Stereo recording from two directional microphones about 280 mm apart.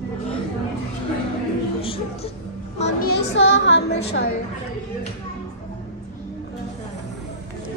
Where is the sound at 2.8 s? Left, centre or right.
Left.